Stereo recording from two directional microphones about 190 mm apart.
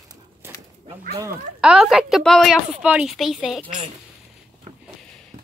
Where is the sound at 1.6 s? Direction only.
5° right (ahead or behind).